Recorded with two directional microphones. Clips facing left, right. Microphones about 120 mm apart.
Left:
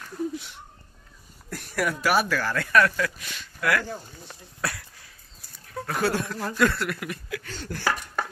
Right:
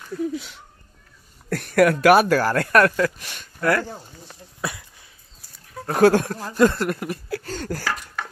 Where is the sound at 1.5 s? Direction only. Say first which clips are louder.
Right 11 dB; 70° right (ahead or behind).